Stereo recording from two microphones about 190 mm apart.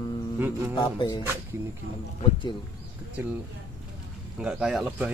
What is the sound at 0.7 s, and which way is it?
Music, 25° left (ahead or behind).